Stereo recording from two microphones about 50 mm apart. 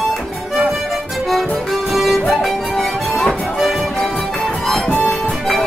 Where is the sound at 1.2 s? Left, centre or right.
Centre.